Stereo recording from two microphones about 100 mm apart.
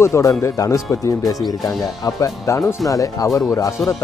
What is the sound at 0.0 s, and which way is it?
Speech, 30° left (ahead or behind).